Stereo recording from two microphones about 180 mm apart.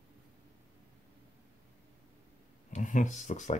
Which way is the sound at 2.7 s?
45° left (ahead or behind).